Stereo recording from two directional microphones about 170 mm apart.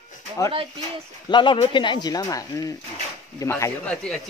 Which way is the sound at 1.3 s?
30° left (ahead or behind).